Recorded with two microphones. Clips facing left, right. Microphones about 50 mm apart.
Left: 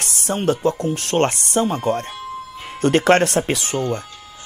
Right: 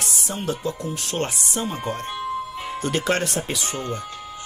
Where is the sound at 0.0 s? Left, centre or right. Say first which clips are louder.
Left 7 dB; left.